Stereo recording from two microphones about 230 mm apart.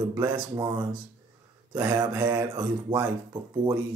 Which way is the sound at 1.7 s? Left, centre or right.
Centre.